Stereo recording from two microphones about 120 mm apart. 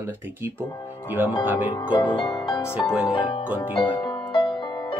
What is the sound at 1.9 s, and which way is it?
Speech, 45° left (ahead or behind).